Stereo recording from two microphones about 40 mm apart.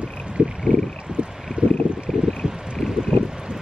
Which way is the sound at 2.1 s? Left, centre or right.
Centre.